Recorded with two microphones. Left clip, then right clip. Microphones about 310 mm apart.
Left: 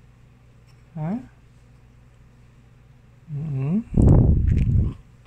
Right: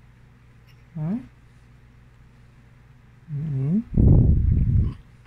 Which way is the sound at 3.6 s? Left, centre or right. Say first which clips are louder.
Left 2 dB; left.